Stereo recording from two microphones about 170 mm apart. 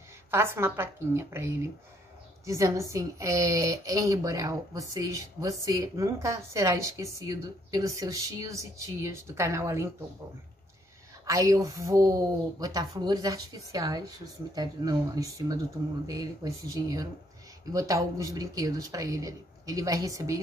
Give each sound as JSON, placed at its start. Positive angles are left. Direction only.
{"t": 0.3, "sound": "a woman's voice", "side_deg": -15}
{"t": 11.2, "sound": "a woman's voice", "side_deg": -20}